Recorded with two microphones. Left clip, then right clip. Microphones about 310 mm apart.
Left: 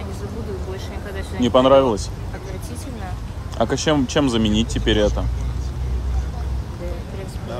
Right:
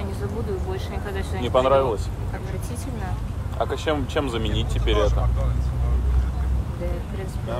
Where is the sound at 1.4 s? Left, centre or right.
Left.